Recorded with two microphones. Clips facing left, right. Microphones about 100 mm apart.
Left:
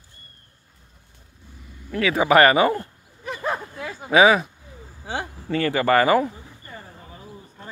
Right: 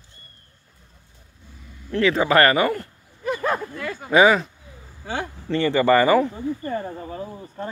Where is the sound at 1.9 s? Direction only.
10° left (ahead or behind).